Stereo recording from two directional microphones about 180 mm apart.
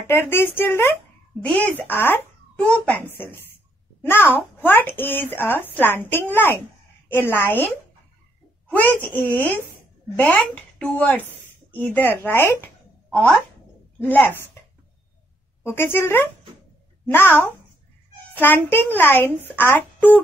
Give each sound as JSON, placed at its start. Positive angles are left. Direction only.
{"t": 0.0, "sound": "speech", "side_deg": 15}
{"t": 15.6, "sound": "speech", "side_deg": 15}
{"t": 18.3, "sound": "speech", "side_deg": 10}